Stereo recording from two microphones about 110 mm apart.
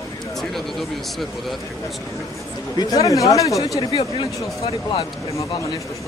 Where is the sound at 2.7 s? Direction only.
30° left (ahead or behind).